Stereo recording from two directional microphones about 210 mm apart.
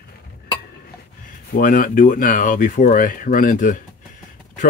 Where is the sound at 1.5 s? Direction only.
40° left (ahead or behind).